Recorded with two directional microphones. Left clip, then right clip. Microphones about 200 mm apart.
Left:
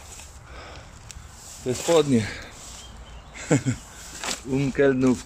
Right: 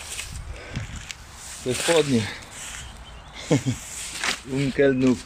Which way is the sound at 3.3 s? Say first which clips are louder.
Even; centre (ahead or behind).